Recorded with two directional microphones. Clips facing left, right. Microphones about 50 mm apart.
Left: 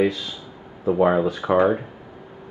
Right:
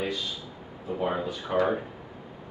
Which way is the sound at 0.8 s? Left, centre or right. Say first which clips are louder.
Left 11 dB; left.